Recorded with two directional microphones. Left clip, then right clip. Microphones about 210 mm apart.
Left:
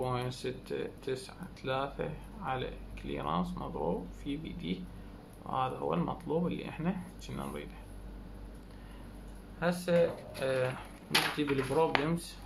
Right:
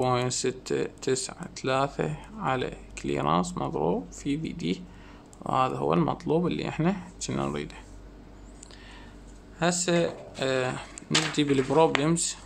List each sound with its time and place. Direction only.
0.0 s speech: 50° right (ahead or behind)
9.6 s speech: 50° right (ahead or behind)